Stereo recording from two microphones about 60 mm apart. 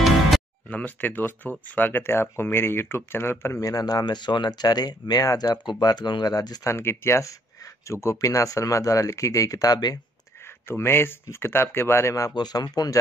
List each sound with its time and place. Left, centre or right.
0.7 s speech: left
3.6 s speech: left
6.6 s speech: left
10.4 s speech: left
12.5 s speech: left